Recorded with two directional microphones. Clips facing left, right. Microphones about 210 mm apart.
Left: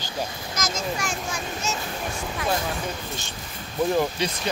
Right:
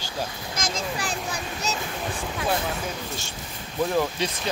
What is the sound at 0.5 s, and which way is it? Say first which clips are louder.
Speech: left 1 dB; 30° right (ahead or behind).